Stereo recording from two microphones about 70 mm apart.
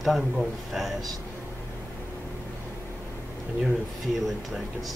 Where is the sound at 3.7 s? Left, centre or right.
Centre.